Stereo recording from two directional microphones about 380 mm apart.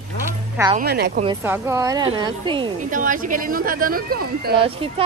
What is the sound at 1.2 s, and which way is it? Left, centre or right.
A woman's voice, centre.